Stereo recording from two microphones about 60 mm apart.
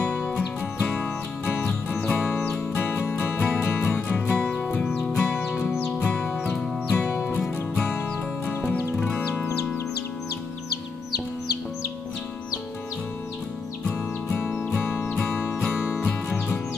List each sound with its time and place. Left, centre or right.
0.7 s music: centre
2.8 s music: left
4.4 s music: centre
9.1 s music: left